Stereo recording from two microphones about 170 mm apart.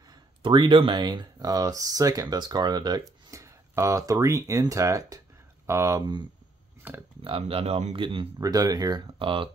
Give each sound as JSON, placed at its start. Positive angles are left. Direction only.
{"t": 0.4, "sound": "speech", "side_deg": -30}
{"t": 6.8, "sound": "speech", "side_deg": -10}
{"t": 7.2, "sound": "speech", "side_deg": -35}